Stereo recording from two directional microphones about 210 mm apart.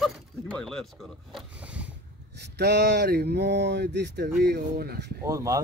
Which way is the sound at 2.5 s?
50° right (ahead or behind).